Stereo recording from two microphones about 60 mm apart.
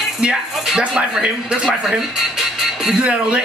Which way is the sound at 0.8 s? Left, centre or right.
Right.